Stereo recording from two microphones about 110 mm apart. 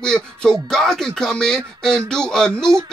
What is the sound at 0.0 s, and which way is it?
Speech, 5° left (ahead or behind).